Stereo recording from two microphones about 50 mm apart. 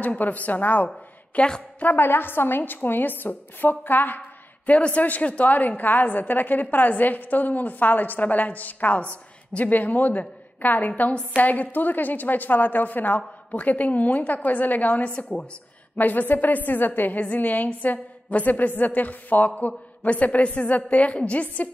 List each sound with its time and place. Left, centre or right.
0.0 s a woman's voice: left
1.3 s a woman's voice: left
1.8 s a woman's voice: left
4.6 s a woman's voice: left
9.0 s a woman's voice: left
9.7 s a woman's voice: left
16.0 s a woman's voice: left